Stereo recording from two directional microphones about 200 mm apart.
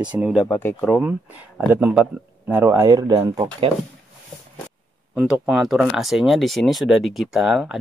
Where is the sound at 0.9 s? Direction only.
5° right (ahead or behind); by 3.7 s 20° right (ahead or behind).